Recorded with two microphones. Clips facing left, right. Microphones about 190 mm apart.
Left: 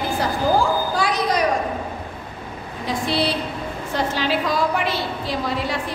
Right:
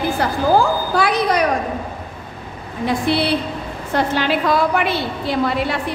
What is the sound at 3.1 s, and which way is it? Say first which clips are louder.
A woman's voice: right 2 dB; 60° right (ahead or behind).